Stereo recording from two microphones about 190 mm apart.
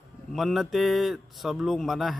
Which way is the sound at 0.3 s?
Centre (ahead or behind).